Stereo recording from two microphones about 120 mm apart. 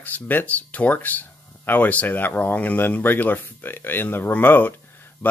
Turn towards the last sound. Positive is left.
turn(degrees=15)  # may be behind; listen again after turning